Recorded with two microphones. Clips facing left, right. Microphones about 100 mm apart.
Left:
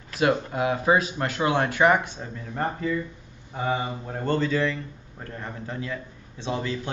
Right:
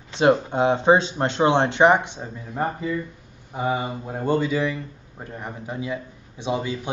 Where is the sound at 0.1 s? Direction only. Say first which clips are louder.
Right 5 dB; 30° right (ahead or behind).